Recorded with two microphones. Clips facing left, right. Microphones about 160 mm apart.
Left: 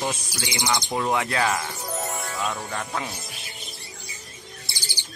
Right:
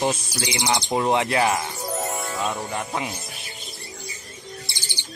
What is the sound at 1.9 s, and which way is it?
Music, centre (ahead or behind).